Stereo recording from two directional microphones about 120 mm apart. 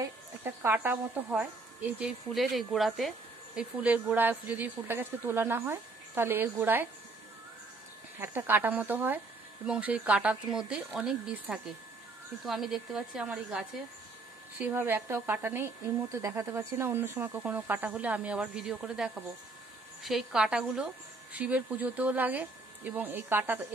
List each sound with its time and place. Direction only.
0.0 s a sound: 20° right (ahead or behind)
1.3 s speech: 10° right (ahead or behind)
3.8 s a woman's voice: 15° right (ahead or behind)
8.2 s a woman's voice: 20° right (ahead or behind)
14.6 s a woman's voice: 15° right (ahead or behind)